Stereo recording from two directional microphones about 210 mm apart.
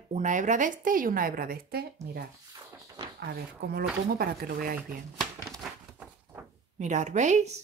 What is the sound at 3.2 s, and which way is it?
Speech, 50° right (ahead or behind).